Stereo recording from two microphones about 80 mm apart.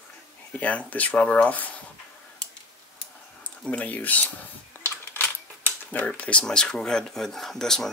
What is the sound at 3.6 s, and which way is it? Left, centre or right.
Speech, centre.